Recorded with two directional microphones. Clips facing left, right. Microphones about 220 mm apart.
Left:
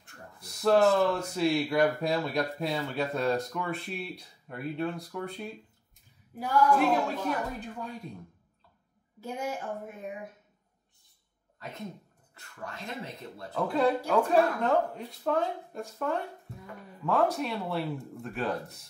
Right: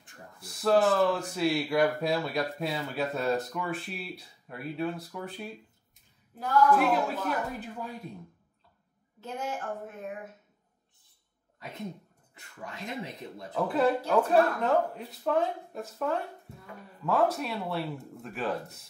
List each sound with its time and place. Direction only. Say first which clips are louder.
0.4 s speech: left 1 dB; centre (ahead or behind)
6.3 s a woman's voice: right 1 dB; 10° left (ahead or behind)
6.8 s speech: even; 5° right (ahead or behind)
9.2 s a woman's voice: left 1 dB; 10° left (ahead or behind)
12.4 s speech: even; 15° right (ahead or behind)
13.6 s speech: even; centre (ahead or behind)